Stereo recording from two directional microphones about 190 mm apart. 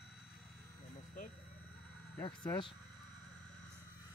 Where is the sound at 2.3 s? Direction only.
25° left (ahead or behind).